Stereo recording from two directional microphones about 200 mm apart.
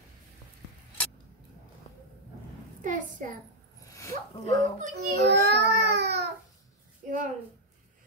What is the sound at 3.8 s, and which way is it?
Dog, 15° left (ahead or behind).